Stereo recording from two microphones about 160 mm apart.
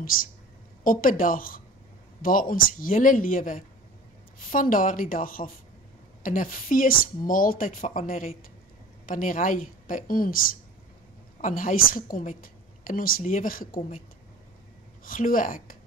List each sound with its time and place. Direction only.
0.0 s a woman's voice: 60° left (ahead or behind)
11.4 s a woman's voice: 60° left (ahead or behind)
15.0 s a woman's voice: 60° left (ahead or behind)